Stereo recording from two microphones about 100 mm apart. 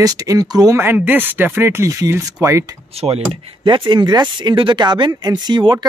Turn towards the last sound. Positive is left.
turn(degrees=-50)  # may be behind; listen again after turning